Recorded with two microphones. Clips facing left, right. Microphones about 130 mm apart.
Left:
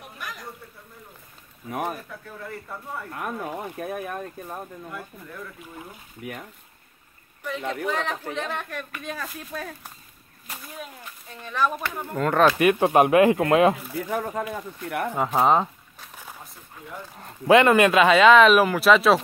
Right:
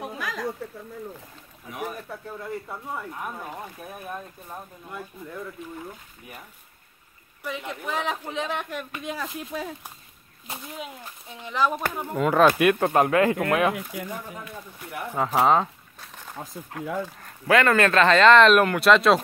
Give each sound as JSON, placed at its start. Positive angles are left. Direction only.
{"t": 0.0, "sound": "a sound", "side_deg": -90}
{"t": 1.7, "sound": "speech", "side_deg": 55}
{"t": 3.1, "sound": "speech", "side_deg": 75}
{"t": 6.2, "sound": "speech", "side_deg": 70}
{"t": 7.9, "sound": "speech", "side_deg": -15}
{"t": 14.0, "sound": "speech", "side_deg": 80}
{"t": 15.2, "sound": "a sound", "side_deg": -5}
{"t": 16.7, "sound": "speech", "side_deg": -90}
{"t": 17.2, "sound": "speech", "side_deg": 20}